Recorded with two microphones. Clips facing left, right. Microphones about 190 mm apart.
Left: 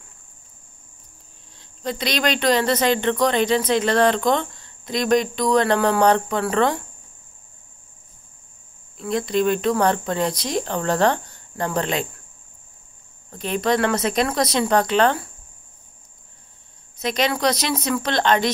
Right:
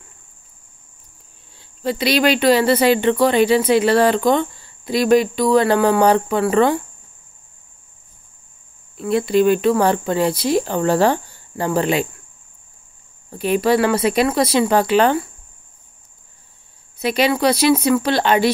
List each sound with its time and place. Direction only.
1.6 s speech: 5° right (ahead or behind)
8.9 s speech: 5° right (ahead or behind)
13.3 s speech: 10° right (ahead or behind)
17.0 s speech: 10° right (ahead or behind)